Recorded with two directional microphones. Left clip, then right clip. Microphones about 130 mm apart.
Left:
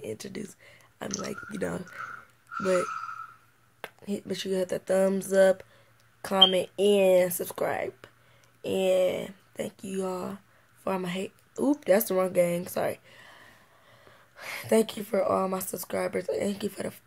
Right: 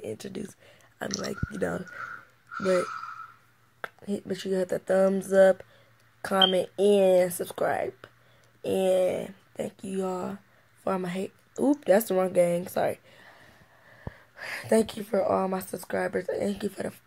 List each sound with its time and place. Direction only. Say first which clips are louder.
0.0 s speech: right 1 dB; 5° left (ahead or behind)
2.5 s speech: right 1 dB; 25° right (ahead or behind)
3.8 s speech: right 2 dB; 15° left (ahead or behind)